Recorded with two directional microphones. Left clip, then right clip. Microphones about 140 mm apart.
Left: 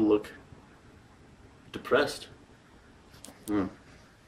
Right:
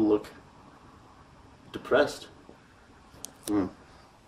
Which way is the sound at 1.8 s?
10° right (ahead or behind).